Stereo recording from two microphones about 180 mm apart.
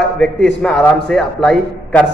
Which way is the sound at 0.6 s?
5° left (ahead or behind).